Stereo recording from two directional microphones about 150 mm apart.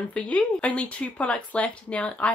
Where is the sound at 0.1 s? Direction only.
5° left (ahead or behind).